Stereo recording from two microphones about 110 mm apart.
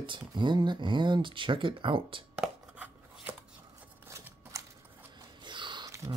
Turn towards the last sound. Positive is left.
turn(degrees=-45)  # may be behind; listen again after turning